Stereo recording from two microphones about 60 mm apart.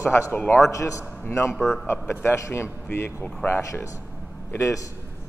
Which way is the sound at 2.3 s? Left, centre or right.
Left.